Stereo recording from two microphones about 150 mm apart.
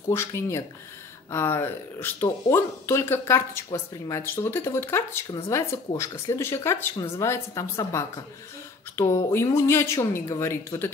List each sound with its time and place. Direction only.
0.1 s speech: 15° left (ahead or behind)